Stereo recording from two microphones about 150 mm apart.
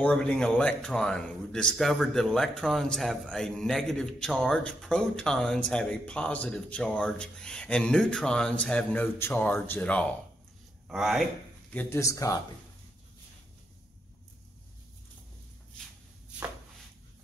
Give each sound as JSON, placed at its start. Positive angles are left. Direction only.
{"t": 0.0, "sound": "a man's voice", "side_deg": 5}
{"t": 10.9, "sound": "a man's voice", "side_deg": 0}
{"t": 11.7, "sound": "speech", "side_deg": 15}